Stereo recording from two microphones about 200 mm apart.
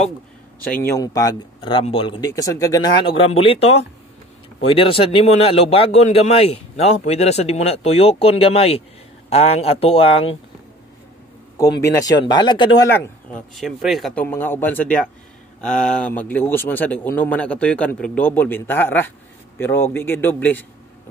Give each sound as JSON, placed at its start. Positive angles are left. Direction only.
{"t": 0.7, "sound": "a man's voice", "side_deg": 10}
{"t": 11.5, "sound": "a man's voice", "side_deg": 15}
{"t": 13.6, "sound": "a man's voice", "side_deg": 0}